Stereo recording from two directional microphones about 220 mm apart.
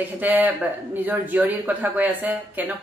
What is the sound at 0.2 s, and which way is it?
Speech, 10° right (ahead or behind).